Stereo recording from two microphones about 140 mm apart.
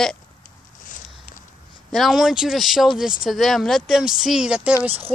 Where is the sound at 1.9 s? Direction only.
Centre (ahead or behind).